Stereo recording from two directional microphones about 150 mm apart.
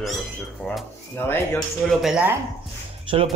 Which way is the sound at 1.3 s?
15° left (ahead or behind).